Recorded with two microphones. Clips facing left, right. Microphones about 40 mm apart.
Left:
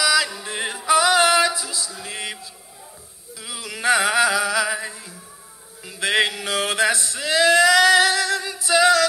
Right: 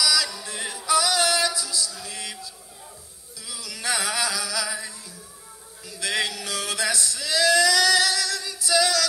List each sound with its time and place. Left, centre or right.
0.0 s music: left
5.9 s male singing: left